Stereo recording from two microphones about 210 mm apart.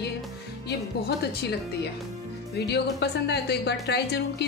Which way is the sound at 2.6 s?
50° left (ahead or behind).